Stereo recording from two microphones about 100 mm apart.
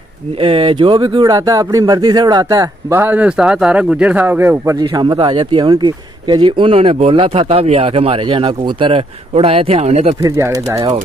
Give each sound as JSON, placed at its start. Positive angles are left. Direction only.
{"t": 0.4, "sound": "speech", "side_deg": -70}
{"t": 2.9, "sound": "a man's voice", "side_deg": -20}
{"t": 4.7, "sound": "speech", "side_deg": -45}
{"t": 10.2, "sound": "speech", "side_deg": -25}